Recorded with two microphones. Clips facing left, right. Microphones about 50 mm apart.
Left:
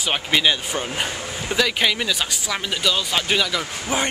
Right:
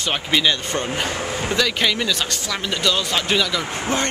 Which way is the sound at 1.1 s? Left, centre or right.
Right.